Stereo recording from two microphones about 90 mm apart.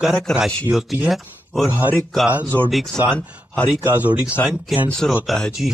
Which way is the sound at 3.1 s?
15° left (ahead or behind).